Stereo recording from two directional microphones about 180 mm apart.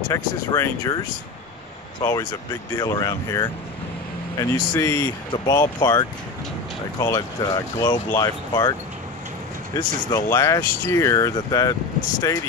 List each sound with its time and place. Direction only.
0.1 s speech: 15° left (ahead or behind)
9.8 s speech: 20° left (ahead or behind)